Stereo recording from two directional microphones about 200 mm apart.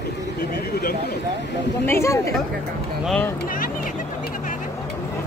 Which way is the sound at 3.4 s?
45° left (ahead or behind).